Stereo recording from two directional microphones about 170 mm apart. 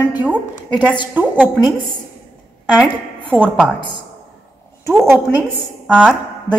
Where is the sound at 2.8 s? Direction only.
10° right (ahead or behind).